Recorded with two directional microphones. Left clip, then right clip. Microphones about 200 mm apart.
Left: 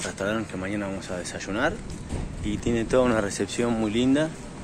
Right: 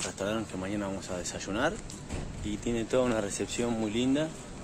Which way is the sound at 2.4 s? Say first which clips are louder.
Left 6 dB; 5° right (ahead or behind).